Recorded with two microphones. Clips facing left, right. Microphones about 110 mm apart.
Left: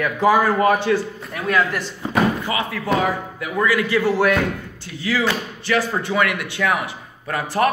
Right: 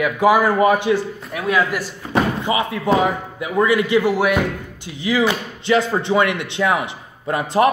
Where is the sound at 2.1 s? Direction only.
20° right (ahead or behind).